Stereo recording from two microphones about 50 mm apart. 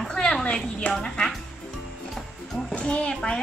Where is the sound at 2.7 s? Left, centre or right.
Left.